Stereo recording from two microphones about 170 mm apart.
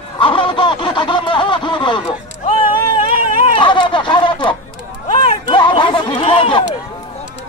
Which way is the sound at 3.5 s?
30° left (ahead or behind).